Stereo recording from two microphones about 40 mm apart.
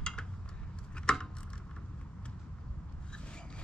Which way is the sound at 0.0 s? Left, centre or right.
Centre.